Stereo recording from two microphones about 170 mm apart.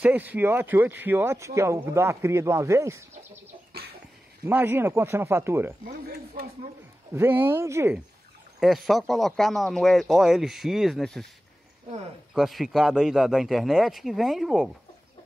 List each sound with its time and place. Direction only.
0.0 s a man's voice: 10° right (ahead or behind)
3.7 s a sound: 70° right (ahead or behind)
4.5 s a man's voice: 10° right (ahead or behind)
5.9 s speech: 65° right (ahead or behind)
7.2 s a man's voice: 10° right (ahead or behind)
8.5 s speech: centre (ahead or behind)
12.4 s speech: centre (ahead or behind)